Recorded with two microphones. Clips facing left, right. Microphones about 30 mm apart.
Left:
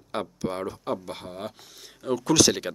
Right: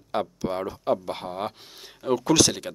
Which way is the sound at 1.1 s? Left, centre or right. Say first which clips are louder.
Right 5 dB; right.